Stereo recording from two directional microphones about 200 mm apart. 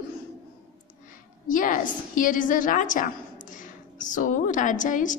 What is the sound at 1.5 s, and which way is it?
A woman's voice, 40° left (ahead or behind).